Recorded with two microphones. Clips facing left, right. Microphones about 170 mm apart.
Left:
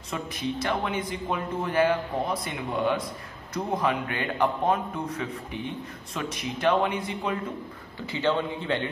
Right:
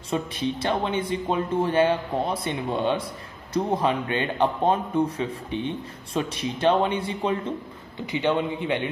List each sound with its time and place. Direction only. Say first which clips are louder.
0.1 s speech: right 4 dB; 30° right (ahead or behind)
8.1 s a man's voice: right 2 dB; 15° right (ahead or behind)